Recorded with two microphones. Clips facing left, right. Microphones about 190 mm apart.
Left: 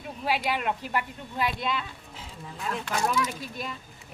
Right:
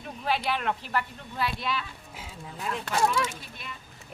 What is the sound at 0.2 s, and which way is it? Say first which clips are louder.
Speech: left 1 dB; 15° left (ahead or behind).